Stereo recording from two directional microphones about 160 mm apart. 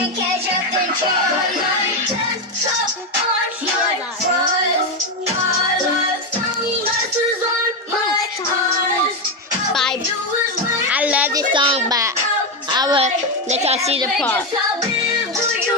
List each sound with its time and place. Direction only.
10.9 s children playing: 10° right (ahead or behind)
11.3 s a sound: 30° right (ahead or behind)
12.7 s music: 25° right (ahead or behind)
13.0 s music: 45° right (ahead or behind)
14.0 s a woman's voice: 10° left (ahead or behind)